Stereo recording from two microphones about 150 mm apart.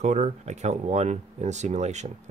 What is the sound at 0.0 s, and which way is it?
Speech, 50° right (ahead or behind).